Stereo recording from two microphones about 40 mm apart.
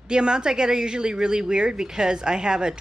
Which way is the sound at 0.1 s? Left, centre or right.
Centre.